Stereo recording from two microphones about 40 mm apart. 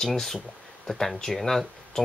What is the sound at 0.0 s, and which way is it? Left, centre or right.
Speech, centre.